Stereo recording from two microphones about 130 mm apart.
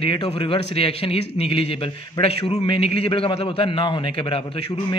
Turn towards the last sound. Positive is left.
turn(degrees=40)  # may be behind; listen again after turning